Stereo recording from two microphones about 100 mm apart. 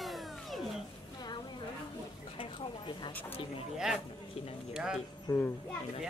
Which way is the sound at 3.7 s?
5° right (ahead or behind).